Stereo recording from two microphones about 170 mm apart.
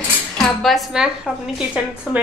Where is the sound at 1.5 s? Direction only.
5° right (ahead or behind).